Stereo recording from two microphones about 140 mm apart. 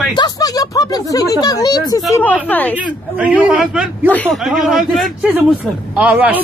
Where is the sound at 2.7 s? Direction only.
10° right (ahead or behind).